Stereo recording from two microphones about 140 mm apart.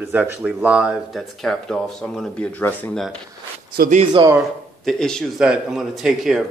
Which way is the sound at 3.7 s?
90° right.